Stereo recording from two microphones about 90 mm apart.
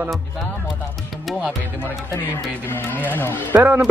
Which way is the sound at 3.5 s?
20° right (ahead or behind).